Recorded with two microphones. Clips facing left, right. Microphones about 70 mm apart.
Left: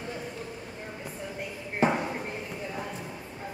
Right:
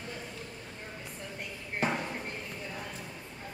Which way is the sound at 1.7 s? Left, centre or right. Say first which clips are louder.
Left 6 dB; centre.